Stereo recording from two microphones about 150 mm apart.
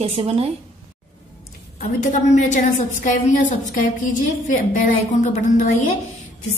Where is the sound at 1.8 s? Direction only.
55° left (ahead or behind).